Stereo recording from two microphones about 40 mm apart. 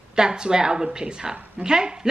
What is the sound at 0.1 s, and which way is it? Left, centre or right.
A woman's voice, centre.